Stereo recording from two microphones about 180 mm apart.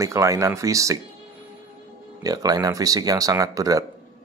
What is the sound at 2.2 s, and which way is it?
Speech, 20° right (ahead or behind).